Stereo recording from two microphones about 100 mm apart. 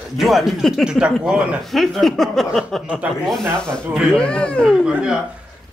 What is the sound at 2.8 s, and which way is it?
Speech, 15° right (ahead or behind).